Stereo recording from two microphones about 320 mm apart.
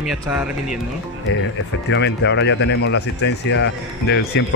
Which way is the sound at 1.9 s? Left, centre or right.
Left.